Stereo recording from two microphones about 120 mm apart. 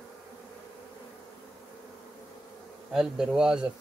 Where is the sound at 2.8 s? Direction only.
5° right (ahead or behind).